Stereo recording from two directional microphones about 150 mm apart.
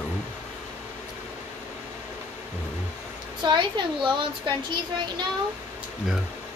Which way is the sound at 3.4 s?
30° right (ahead or behind).